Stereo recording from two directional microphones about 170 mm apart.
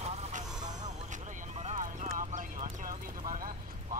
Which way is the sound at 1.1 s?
40° right (ahead or behind).